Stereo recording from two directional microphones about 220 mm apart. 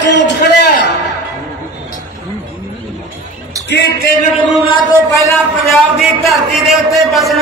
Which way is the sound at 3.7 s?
50° left (ahead or behind).